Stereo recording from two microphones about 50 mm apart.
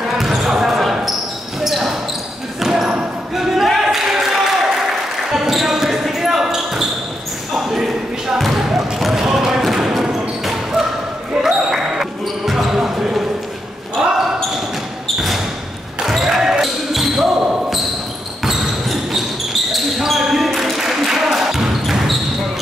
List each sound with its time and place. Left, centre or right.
0.2 s basketball bounce: centre
2.6 s a sound: centre
2.9 s basketball bounce: centre
15.1 s basketball bounce: centre